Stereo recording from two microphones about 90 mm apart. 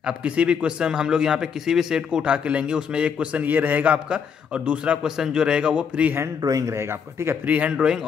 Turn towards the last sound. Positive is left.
turn(degrees=-10)  # may be behind; listen again after turning